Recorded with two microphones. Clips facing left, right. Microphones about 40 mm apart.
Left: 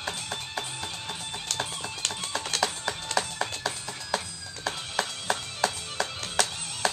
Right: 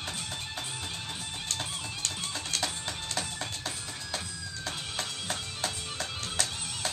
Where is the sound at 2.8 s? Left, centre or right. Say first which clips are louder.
Left 6 dB; left.